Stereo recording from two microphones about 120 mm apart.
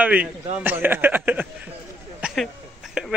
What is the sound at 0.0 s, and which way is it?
A man's voice, 10° right (ahead or behind).